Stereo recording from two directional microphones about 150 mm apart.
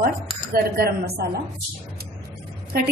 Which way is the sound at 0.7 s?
90° right.